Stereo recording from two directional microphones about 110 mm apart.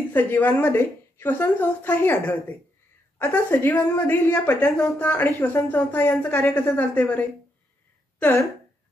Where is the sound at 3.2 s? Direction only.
20° left (ahead or behind).